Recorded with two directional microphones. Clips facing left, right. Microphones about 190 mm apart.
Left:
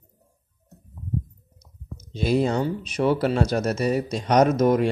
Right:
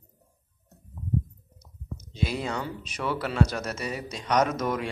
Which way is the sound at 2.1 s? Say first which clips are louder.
Left 9 dB; 35° left (ahead or behind).